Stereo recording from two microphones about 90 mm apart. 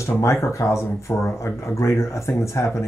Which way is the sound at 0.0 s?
30° left (ahead or behind).